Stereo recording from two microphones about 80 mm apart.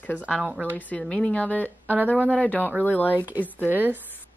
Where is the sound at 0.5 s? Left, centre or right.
Right.